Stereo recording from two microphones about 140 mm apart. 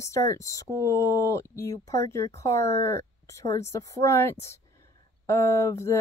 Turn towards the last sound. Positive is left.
turn(degrees=20)  # may be behind; listen again after turning